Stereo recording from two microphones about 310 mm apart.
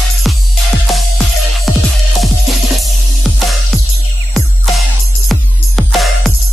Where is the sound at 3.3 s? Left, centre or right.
Centre.